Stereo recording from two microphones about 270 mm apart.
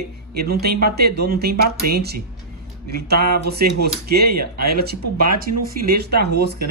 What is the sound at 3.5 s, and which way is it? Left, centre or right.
Speech, right.